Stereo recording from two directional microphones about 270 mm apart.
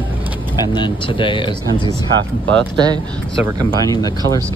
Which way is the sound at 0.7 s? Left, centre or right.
Centre.